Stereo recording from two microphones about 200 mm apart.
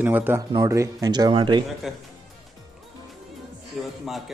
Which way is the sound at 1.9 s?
Centre (ahead or behind).